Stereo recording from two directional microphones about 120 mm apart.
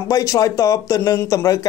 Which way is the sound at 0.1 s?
30° left (ahead or behind).